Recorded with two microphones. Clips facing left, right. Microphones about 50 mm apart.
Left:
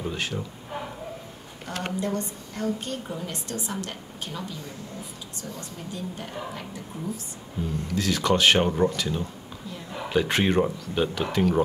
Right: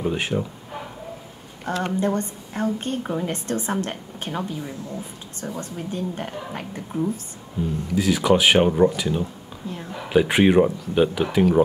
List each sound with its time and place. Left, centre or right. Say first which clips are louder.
0.0 s speech: right 6 dB; right
1.8 s a woman's voice: right 5 dB; right
5.6 s a woman's voice: right 8 dB; right
7.6 s speech: right 5 dB; centre